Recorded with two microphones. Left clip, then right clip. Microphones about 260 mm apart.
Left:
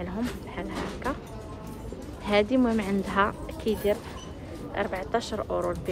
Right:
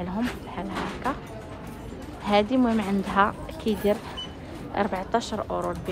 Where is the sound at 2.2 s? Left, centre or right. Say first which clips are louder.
Right 1 dB; centre.